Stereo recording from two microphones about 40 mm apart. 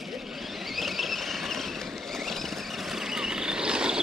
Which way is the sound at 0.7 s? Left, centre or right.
Centre.